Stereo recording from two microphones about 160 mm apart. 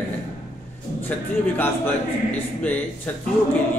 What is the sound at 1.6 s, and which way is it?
Music, 10° left (ahead or behind).